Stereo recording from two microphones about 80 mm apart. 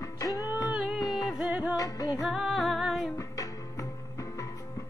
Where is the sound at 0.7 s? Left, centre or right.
Centre.